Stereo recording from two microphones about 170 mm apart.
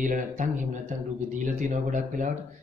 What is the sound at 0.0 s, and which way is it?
Speech, 50° right (ahead or behind).